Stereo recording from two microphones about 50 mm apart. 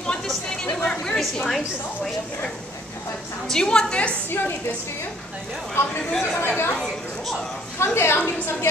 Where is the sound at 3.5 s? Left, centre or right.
Centre.